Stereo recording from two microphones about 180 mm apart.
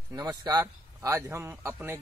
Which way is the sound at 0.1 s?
20° right (ahead or behind).